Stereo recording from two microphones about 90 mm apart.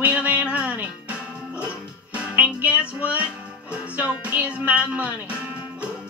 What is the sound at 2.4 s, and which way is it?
Music, 15° right (ahead or behind).